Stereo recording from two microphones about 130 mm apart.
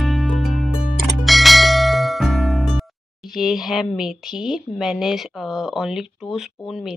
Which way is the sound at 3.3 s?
5° right (ahead or behind).